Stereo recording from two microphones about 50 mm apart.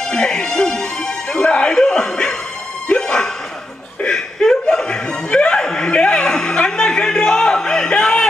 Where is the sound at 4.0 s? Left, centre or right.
Centre.